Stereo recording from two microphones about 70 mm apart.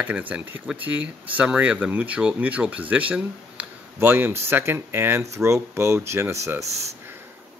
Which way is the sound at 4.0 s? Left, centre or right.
Right.